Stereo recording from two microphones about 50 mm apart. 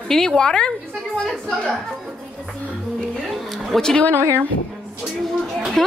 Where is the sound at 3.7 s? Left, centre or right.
Centre.